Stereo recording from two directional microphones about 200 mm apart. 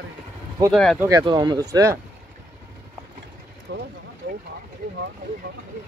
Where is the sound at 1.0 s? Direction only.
20° right (ahead or behind).